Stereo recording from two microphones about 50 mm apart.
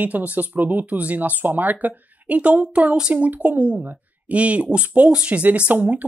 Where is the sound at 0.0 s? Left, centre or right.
Right.